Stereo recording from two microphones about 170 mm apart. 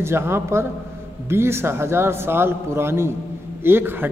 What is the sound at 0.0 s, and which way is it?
A man's voice, 15° right (ahead or behind).